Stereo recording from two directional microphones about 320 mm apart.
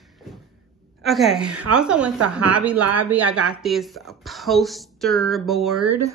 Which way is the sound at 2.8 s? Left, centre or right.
Right.